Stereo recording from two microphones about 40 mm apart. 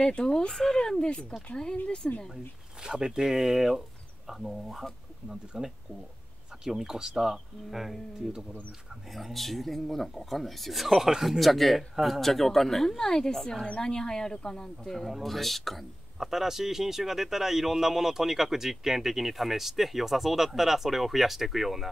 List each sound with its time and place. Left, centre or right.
0.1 s speech: left
2.8 s a man's voice: centre
9.1 s a man's voice: centre
11.3 s speech: centre
14.8 s speech: centre
16.2 s a man's voice: centre